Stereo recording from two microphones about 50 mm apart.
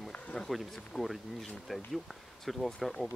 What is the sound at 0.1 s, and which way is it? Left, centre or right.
Run, centre.